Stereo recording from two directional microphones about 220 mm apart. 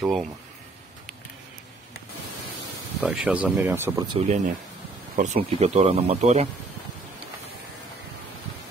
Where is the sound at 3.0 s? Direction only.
5° right (ahead or behind).